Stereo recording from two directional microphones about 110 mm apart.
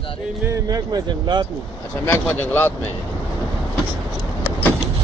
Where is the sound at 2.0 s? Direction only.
20° left (ahead or behind).